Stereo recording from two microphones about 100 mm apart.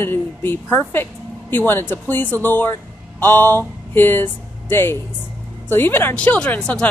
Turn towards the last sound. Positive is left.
turn(degrees=10)  # may be behind; listen again after turning